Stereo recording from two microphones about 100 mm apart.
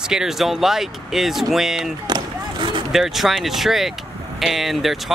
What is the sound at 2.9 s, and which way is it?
Speech, centre (ahead or behind).